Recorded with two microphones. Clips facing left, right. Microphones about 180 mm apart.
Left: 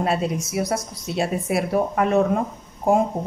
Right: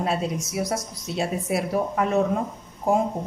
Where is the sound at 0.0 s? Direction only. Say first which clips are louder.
Left 3 dB; 60° left (ahead or behind).